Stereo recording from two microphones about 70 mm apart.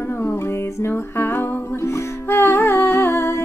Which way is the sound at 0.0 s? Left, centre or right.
Left.